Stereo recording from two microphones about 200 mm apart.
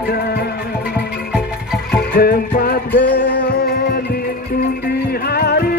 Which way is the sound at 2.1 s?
50° left (ahead or behind).